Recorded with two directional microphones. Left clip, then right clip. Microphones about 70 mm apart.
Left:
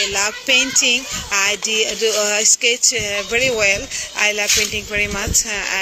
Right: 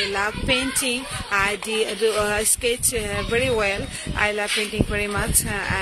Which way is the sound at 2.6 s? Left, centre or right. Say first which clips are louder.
Left 7 dB; right.